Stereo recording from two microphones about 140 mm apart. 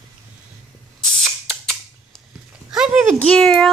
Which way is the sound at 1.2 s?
Centre (ahead or behind).